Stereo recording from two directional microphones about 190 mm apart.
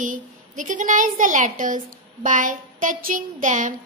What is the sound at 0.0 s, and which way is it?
A woman's voice, 40° right (ahead or behind).